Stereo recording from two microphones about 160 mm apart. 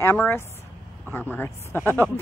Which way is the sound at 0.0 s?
15° left (ahead or behind).